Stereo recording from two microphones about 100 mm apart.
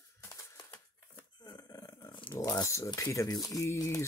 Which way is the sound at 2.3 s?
35° left (ahead or behind).